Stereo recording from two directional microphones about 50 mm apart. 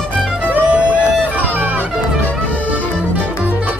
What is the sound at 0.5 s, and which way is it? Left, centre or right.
Music, right.